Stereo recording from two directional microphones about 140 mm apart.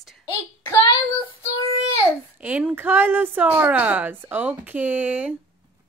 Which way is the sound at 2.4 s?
10° right (ahead or behind).